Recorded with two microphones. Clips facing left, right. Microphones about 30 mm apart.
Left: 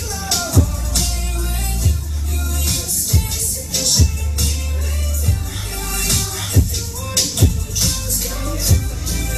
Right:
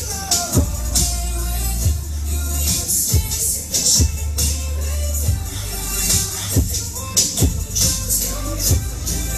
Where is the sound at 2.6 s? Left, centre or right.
Centre.